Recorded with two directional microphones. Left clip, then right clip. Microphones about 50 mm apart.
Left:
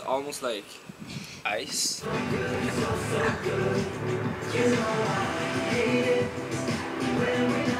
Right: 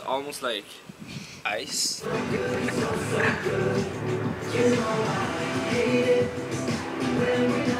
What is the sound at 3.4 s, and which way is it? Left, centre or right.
Music, centre.